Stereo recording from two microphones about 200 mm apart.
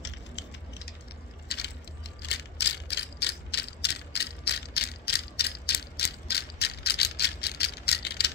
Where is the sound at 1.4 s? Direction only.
55° left (ahead or behind).